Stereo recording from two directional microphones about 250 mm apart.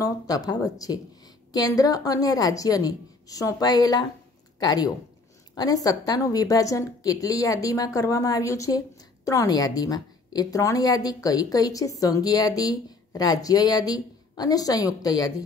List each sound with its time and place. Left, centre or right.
0.0 s a woman's voice: centre